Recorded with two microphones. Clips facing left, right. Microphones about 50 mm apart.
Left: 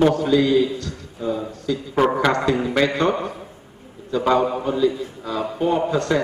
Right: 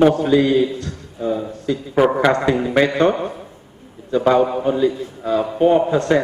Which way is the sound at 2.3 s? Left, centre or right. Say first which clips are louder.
Right 3 dB; right.